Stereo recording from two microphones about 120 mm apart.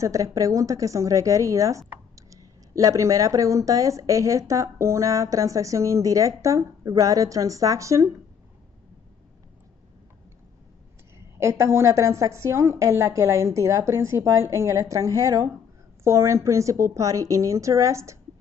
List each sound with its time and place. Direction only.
0.0 s speech: 25° right (ahead or behind)
11.1 s speech: 20° right (ahead or behind)